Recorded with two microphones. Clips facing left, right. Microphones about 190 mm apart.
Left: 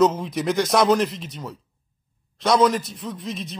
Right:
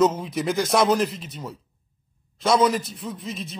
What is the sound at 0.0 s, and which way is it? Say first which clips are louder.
A man's voice: left 1 dB; centre (ahead or behind).